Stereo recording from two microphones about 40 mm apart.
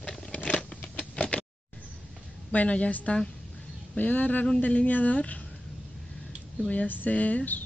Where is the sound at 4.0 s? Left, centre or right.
Left.